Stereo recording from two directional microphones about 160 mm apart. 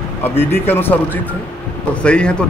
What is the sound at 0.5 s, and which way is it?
Speech, 15° left (ahead or behind).